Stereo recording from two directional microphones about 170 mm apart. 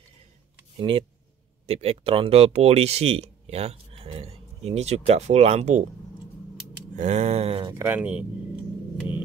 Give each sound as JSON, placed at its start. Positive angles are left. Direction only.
{"t": 0.7, "sound": "speech", "side_deg": -30}
{"t": 7.0, "sound": "speech", "side_deg": -40}
{"t": 7.7, "sound": "speech", "side_deg": -10}